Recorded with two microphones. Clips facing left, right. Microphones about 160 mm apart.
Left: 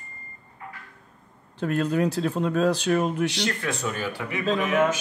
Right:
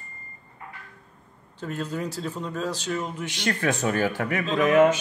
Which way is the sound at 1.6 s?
65° left (ahead or behind).